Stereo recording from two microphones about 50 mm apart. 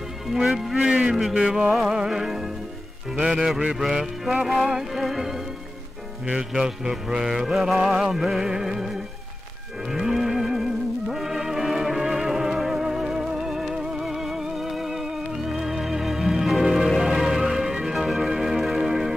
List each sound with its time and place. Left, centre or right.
0.3 s a man's voice: centre
1.3 s music: centre
1.7 s a man's voice: centre
2.0 s music: centre